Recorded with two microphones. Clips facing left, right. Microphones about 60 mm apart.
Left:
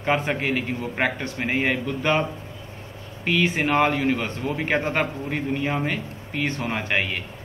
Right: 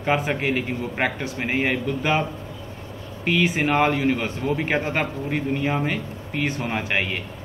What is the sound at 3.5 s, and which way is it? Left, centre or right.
Speech, centre.